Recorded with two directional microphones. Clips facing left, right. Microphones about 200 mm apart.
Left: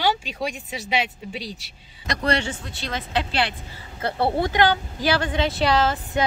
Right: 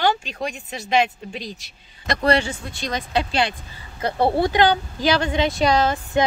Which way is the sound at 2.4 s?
10° right (ahead or behind).